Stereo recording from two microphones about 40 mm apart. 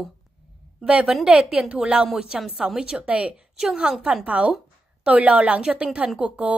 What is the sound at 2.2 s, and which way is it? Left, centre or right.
Speech, centre.